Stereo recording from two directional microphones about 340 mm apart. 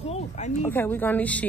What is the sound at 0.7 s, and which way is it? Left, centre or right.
Speech, centre.